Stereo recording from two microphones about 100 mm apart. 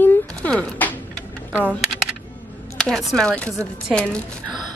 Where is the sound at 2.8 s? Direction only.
5° left (ahead or behind).